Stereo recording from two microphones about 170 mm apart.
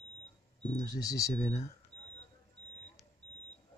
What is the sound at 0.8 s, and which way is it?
Speech, 20° left (ahead or behind).